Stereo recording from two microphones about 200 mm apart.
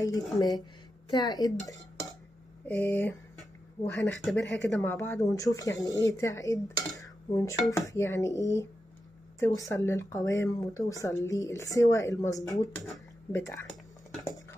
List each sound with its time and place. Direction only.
0.0 s speech: 20° left (ahead or behind)
3.3 s a sound: 10° left (ahead or behind)
4.6 s speech: centre (ahead or behind)
4.9 s speech: 10° left (ahead or behind)
12.7 s speech: centre (ahead or behind)
13.3 s speech: 15° left (ahead or behind)